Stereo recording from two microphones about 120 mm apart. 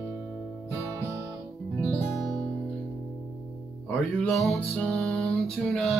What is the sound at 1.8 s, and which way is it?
Music, 5° left (ahead or behind).